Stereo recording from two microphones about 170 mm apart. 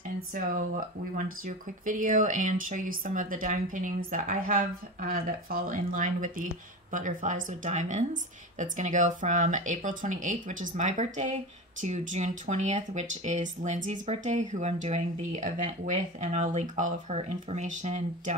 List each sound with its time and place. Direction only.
0.3 s speech: 55° right (ahead or behind)